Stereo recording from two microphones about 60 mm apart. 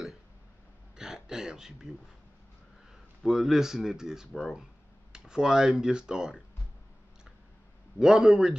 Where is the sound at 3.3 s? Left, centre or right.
Centre.